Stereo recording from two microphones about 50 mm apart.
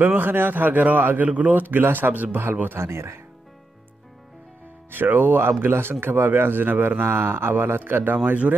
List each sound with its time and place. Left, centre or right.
0.0 s a man's voice: right
2.8 s speech: right
4.9 s a man's voice: right